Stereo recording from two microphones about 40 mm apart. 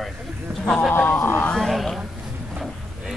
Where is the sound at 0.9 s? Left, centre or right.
Left.